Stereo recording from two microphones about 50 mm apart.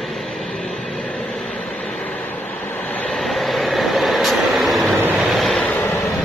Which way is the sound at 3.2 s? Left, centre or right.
Centre.